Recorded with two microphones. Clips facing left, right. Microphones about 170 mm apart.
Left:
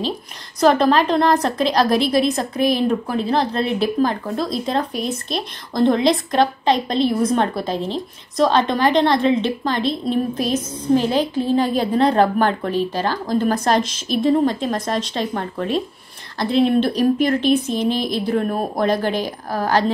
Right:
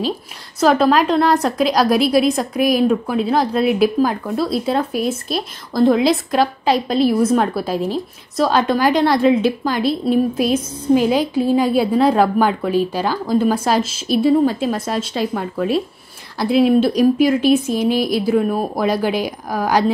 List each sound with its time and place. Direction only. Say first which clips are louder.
0.6 s a woman's voice: right 1 dB; 5° right (ahead or behind)